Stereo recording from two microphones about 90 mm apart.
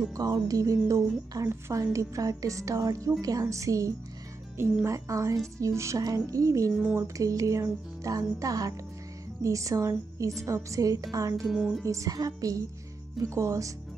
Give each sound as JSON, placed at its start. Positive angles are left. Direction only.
{"t": 0.1, "sound": "a woman's voice", "side_deg": -45}
{"t": 11.4, "sound": "speech", "side_deg": 0}
{"t": 11.8, "sound": "a woman's voice", "side_deg": -35}